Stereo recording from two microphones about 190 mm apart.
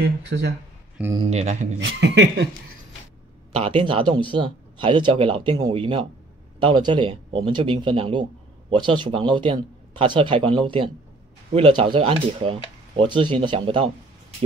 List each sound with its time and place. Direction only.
0.0 s speech: 60° right (ahead or behind)
1.1 s speech: 35° right (ahead or behind)
1.8 s speech: 70° right (ahead or behind)
3.5 s speech: 30° right (ahead or behind)